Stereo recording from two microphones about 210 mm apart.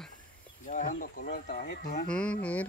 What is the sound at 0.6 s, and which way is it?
Speech, 40° left (ahead or behind).